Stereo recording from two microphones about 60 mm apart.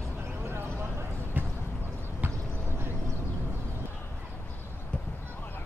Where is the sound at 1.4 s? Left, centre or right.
Right.